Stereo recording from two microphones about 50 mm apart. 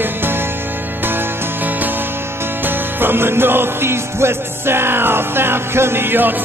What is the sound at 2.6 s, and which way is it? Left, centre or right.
Music, right.